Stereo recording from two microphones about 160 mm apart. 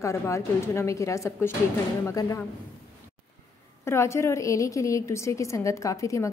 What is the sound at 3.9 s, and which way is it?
A woman's voice, 15° left (ahead or behind).